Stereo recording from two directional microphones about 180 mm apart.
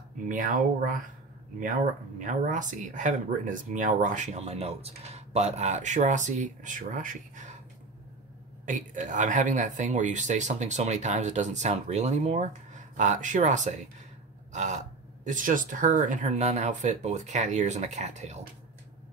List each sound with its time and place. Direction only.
0.3 s speech: 50° right (ahead or behind)
2.1 s speech: 45° right (ahead or behind)
8.6 s speech: 45° right (ahead or behind)
14.5 s a sound: 40° right (ahead or behind)
15.2 s speech: 45° right (ahead or behind)